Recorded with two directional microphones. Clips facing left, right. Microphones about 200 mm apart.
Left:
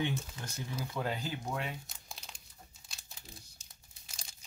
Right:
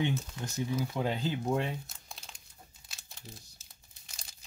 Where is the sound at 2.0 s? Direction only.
Centre (ahead or behind).